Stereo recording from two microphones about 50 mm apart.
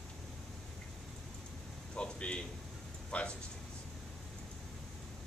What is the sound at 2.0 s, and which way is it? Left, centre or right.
Speech, left.